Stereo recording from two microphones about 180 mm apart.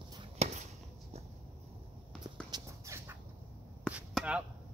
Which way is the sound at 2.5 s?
15° right (ahead or behind).